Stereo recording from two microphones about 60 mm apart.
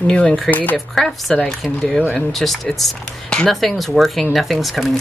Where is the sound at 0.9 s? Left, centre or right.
Centre.